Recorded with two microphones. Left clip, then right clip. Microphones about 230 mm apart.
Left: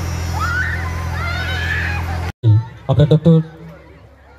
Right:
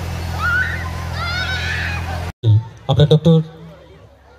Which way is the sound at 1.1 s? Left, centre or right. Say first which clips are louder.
Right 2 dB; right.